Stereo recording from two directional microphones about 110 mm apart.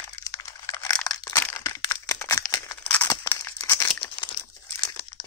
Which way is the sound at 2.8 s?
15° left (ahead or behind).